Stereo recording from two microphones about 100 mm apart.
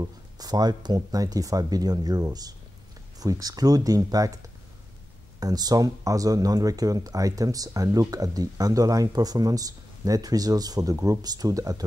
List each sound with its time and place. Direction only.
0.0 s speech: 40° right (ahead or behind)